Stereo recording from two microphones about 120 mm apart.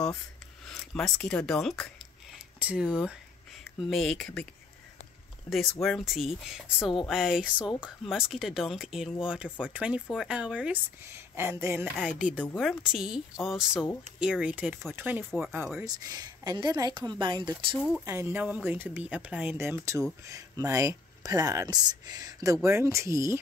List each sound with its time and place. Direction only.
0.7 s speech: 5° left (ahead or behind)
2.6 s speech: 10° right (ahead or behind)
5.5 s speech: centre (ahead or behind)
11.1 s speech: 20° right (ahead or behind)
12.4 s speech: 5° right (ahead or behind)
15.8 s a woman's voice: 30° right (ahead or behind)
17.7 s speech: centre (ahead or behind)
18.0 s speech: 20° right (ahead or behind)